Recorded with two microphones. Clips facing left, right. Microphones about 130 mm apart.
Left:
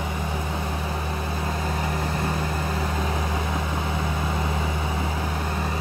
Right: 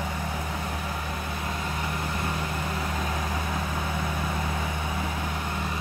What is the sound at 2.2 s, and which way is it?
Vehicle, 35° left (ahead or behind).